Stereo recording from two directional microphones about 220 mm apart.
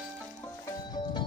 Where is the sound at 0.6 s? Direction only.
20° left (ahead or behind).